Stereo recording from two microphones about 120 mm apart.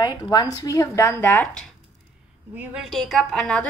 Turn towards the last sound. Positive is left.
turn(degrees=10)  # may be behind; listen again after turning